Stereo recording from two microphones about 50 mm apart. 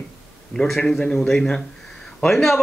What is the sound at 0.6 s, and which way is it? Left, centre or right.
A man's voice, centre.